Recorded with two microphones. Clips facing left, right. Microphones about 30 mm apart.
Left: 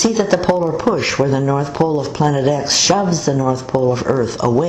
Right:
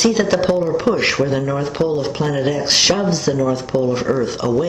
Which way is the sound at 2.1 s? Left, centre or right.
Centre.